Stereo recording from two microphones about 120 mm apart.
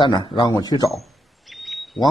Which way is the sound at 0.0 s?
40° left (ahead or behind).